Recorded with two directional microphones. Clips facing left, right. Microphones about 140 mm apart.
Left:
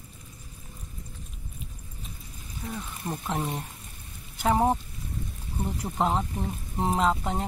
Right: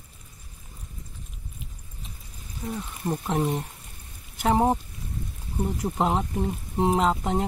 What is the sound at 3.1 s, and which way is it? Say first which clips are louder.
Speech: right 5 dB; 15° right (ahead or behind).